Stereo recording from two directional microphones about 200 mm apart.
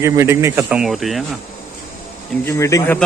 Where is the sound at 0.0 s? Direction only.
15° right (ahead or behind).